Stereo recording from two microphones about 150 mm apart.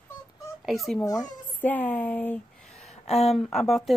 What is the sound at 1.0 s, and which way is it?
Speech, 25° left (ahead or behind).